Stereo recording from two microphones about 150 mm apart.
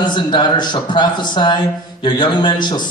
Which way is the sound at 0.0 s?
30° left (ahead or behind).